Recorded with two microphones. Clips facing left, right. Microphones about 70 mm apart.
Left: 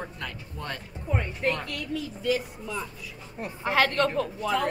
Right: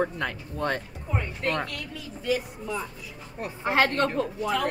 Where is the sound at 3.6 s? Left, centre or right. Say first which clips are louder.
Even; right.